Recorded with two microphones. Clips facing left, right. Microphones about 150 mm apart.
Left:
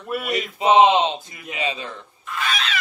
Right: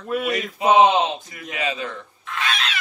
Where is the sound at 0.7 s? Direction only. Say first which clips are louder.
Left 1 dB; 25° left (ahead or behind).